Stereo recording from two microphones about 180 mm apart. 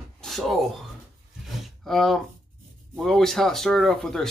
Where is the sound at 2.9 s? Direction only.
Centre (ahead or behind).